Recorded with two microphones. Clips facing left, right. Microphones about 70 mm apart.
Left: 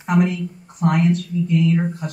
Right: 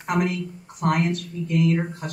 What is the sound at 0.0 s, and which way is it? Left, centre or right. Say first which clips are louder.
A woman's voice: left 5 dB; right.